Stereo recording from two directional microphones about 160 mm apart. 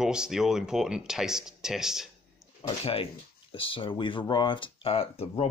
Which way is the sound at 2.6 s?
35° left (ahead or behind).